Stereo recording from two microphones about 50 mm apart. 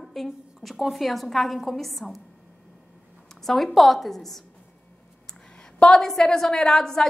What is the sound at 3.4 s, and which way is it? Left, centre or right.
A woman's voice, centre.